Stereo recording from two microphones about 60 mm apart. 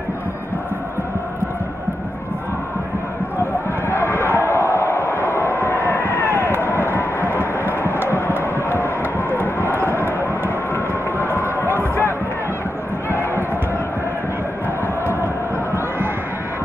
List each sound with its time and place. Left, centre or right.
3.9 s a sound: left
7.8 s music: left
9.4 s run: left